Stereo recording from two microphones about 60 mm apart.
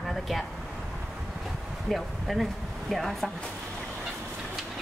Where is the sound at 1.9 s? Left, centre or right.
Centre.